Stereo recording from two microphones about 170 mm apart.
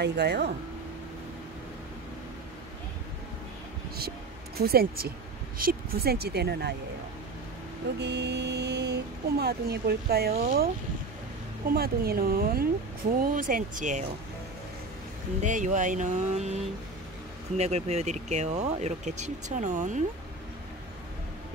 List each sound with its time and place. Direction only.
0.0 s speech: 75° right (ahead or behind)
4.6 s speech: 65° right (ahead or behind)
8.0 s speech: 80° right; by 10.7 s 55° right (ahead or behind)
11.7 s speech: 65° right (ahead or behind); by 14.0 s 50° right (ahead or behind)
15.4 s speech: 45° right (ahead or behind)
17.6 s speech: 40° right (ahead or behind)